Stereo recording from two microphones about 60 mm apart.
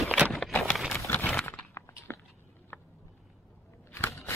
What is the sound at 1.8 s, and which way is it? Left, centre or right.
Walk, left.